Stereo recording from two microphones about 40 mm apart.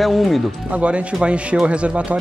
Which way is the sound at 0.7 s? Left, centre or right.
Right.